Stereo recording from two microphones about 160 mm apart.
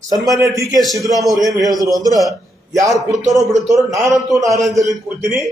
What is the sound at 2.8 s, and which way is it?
A man's voice, centre (ahead or behind).